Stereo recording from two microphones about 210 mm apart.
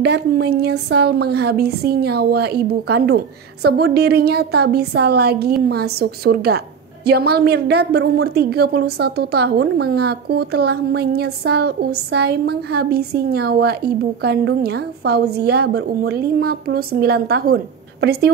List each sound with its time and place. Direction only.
0.0 s a woman's voice: 50° right (ahead or behind)